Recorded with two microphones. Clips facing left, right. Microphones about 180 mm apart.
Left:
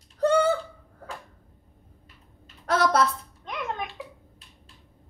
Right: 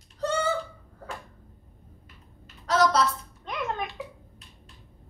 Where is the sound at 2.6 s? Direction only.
55° left (ahead or behind).